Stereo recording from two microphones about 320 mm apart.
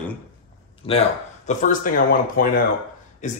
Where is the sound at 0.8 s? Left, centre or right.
Centre.